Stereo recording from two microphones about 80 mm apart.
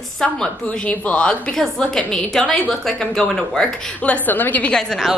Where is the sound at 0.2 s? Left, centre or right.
Centre.